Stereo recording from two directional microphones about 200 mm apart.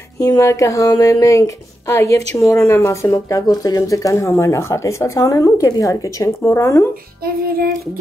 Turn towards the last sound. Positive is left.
turn(degrees=-50)  # may be behind; listen again after turning